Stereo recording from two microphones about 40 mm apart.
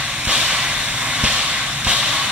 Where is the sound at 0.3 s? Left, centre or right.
Right.